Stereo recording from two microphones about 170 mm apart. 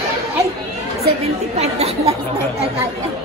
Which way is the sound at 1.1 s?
40° right (ahead or behind).